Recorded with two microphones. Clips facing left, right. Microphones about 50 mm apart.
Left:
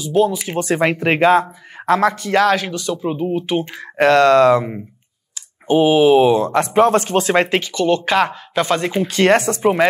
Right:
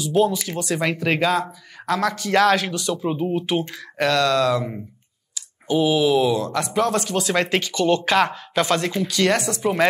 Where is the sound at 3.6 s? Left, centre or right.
Left.